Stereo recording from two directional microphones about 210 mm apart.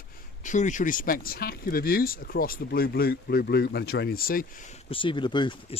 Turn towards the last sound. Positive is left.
turn(degrees=20)  # may be behind; listen again after turning